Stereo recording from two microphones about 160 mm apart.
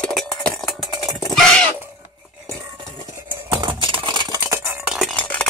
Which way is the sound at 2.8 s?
30° right (ahead or behind).